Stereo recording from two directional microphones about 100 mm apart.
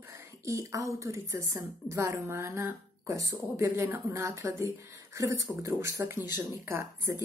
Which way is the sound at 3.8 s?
25° right (ahead or behind).